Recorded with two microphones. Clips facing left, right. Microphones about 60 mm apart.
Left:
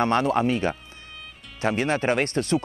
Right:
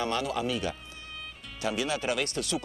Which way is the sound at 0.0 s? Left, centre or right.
Left.